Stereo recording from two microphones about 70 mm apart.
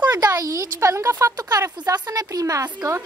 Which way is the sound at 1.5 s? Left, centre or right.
Right.